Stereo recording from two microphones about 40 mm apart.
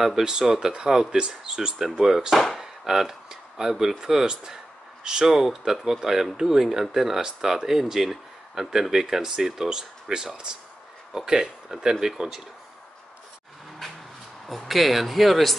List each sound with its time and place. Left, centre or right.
0.0 s speech: centre
2.3 s speech: centre
2.6 s speech: centre
14.7 s speech: centre